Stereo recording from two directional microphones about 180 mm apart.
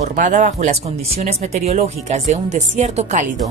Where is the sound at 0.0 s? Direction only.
40° right (ahead or behind).